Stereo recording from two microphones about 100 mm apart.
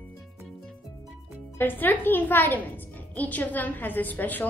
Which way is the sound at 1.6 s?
20° left (ahead or behind).